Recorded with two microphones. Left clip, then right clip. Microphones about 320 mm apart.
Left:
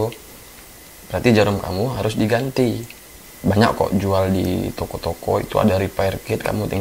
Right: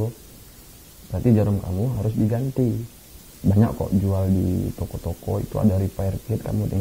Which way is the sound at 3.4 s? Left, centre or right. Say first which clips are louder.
Left 7 dB; centre.